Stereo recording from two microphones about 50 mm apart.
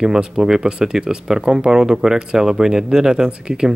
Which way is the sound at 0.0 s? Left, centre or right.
Centre.